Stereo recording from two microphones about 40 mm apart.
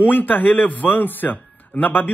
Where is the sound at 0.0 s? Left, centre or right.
Left.